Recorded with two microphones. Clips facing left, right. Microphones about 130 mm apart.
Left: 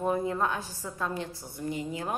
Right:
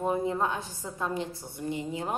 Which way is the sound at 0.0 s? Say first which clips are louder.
Even; 20° right (ahead or behind).